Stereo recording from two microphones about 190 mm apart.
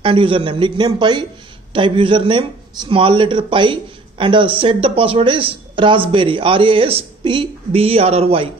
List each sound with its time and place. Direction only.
0.0 s speech: 25° right (ahead or behind)